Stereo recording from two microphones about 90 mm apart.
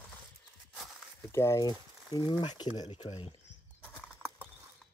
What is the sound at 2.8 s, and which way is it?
Speech, 90° left.